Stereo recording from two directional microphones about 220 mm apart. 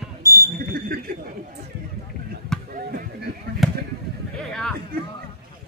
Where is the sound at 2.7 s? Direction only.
40° right (ahead or behind).